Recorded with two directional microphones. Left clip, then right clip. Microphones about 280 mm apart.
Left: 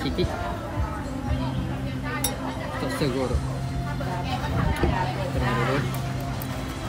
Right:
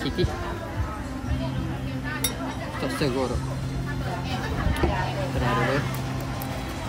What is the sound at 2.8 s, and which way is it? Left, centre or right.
Speech, centre.